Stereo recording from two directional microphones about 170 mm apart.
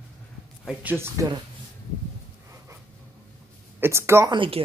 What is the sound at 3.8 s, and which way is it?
Speech, 15° right (ahead or behind).